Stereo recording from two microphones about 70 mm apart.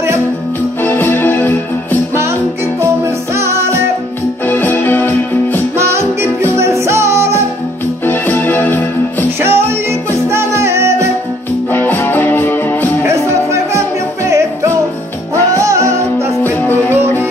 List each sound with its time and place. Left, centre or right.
0.8 s music: left
3.3 s music: right
4.5 s music: left
5.8 s music: right
8.1 s music: left
9.4 s music: right
11.7 s music: left
13.0 s music: right
15.5 s music: right
16.4 s music: left